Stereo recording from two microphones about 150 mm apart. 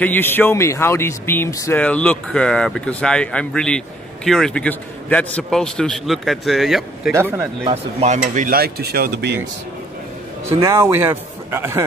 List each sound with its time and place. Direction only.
0.0 s speech: 15° left (ahead or behind)
7.1 s speech: 15° right (ahead or behind)
7.6 s speech: 45° right (ahead or behind)
8.5 s speech: 90° right
10.6 s speech: 20° right (ahead or behind)